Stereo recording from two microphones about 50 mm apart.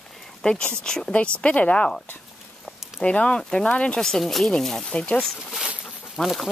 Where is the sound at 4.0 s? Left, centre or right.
Centre.